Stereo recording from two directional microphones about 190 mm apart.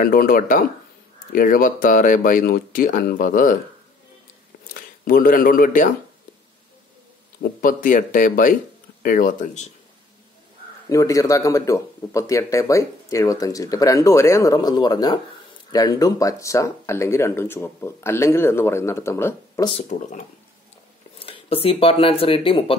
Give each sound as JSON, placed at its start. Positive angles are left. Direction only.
{"t": 0.0, "sound": "speech", "side_deg": 50}
{"t": 5.0, "sound": "speech", "side_deg": 50}
{"t": 7.6, "sound": "speech", "side_deg": 45}
{"t": 10.9, "sound": "speech", "side_deg": 15}
{"t": 19.9, "sound": "speech", "side_deg": 40}
{"t": 21.2, "sound": "speech", "side_deg": 30}